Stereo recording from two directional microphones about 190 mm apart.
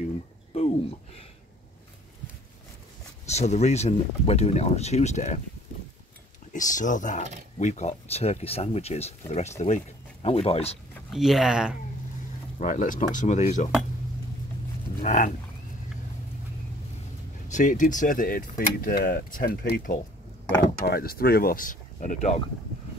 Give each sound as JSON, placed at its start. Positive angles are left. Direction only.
{"t": 0.6, "sound": "a sound", "side_deg": 35}
{"t": 3.3, "sound": "speech", "side_deg": 35}
{"t": 6.5, "sound": "speech", "side_deg": 40}
{"t": 11.1, "sound": "speech", "side_deg": 0}
{"t": 12.5, "sound": "speech", "side_deg": 45}
{"t": 15.0, "sound": "speech", "side_deg": 40}
{"t": 17.5, "sound": "speech", "side_deg": 40}